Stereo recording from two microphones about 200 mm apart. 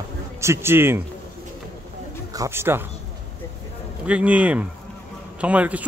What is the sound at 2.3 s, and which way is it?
Speech, 15° right (ahead or behind).